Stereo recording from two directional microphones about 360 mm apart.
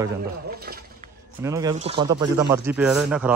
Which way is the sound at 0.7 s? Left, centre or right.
Right.